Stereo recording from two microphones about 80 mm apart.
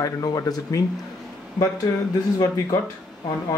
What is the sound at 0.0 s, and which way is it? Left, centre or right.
Speech, left.